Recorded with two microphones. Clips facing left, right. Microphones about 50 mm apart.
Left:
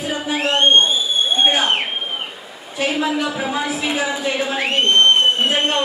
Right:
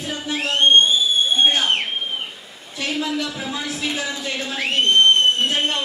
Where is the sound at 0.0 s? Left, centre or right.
Centre.